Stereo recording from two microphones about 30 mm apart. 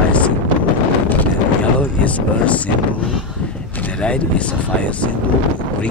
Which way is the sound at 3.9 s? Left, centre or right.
Left.